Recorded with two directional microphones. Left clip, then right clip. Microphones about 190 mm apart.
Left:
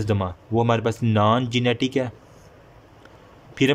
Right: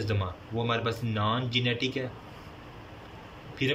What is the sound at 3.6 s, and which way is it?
Speech, 50° left (ahead or behind).